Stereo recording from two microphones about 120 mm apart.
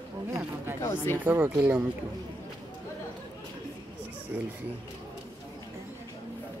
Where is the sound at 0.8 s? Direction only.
25° left (ahead or behind).